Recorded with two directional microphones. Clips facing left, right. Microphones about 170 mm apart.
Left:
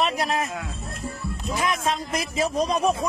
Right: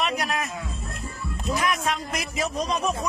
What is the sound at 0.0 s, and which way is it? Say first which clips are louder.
Music: left 3 dB; 30° left (ahead or behind).